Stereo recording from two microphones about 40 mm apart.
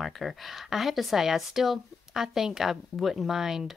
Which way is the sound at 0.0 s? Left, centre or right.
Centre.